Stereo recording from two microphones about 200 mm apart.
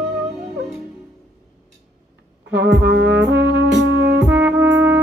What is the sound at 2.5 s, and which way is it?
Brass instrument, 60° right (ahead or behind).